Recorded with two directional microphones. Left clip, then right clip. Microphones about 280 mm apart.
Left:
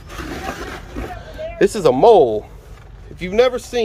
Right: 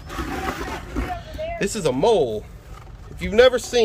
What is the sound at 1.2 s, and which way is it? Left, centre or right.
Speech, centre.